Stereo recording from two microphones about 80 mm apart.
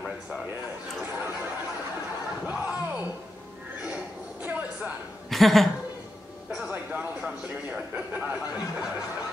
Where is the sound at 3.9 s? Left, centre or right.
Right.